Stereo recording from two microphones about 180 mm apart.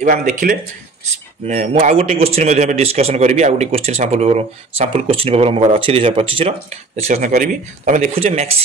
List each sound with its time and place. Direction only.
0.0 s speech: 45° right (ahead or behind)
8.0 s speech: 35° right (ahead or behind)